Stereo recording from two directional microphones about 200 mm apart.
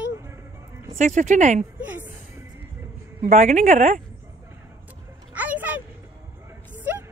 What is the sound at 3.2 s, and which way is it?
Speech, 35° right (ahead or behind).